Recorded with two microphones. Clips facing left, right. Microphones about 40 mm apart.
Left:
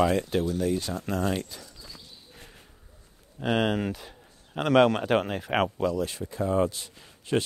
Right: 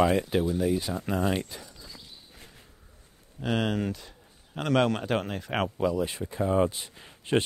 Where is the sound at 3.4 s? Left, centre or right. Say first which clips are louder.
Left 2 dB; centre.